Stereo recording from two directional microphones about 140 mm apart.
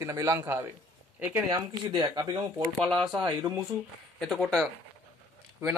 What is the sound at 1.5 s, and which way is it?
Speech, 30° right (ahead or behind).